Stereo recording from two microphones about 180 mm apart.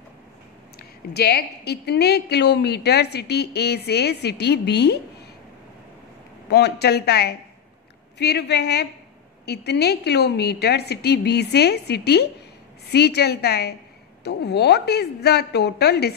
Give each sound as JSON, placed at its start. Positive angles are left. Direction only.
{"t": 0.7, "sound": "a woman's voice", "side_deg": 65}
{"t": 6.5, "sound": "a woman's voice", "side_deg": 65}